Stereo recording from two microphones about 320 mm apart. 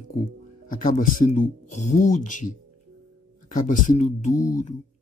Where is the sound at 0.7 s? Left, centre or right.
Left.